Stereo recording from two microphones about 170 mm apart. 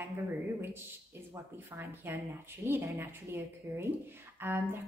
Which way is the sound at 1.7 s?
15° right (ahead or behind).